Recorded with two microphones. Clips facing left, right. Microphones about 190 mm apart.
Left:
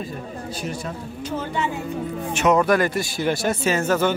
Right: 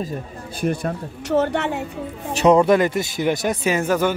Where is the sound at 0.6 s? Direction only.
55° right (ahead or behind).